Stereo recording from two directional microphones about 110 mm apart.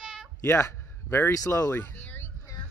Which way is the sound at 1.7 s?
15° left (ahead or behind).